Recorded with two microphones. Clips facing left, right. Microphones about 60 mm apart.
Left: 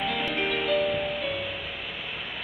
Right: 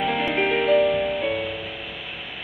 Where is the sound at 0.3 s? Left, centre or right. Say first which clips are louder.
Right 8 dB; right.